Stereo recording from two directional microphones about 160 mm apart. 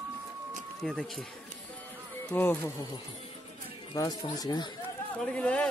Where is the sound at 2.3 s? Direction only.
10° left (ahead or behind).